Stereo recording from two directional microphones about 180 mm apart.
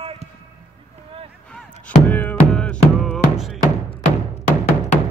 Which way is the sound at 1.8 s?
10° left (ahead or behind).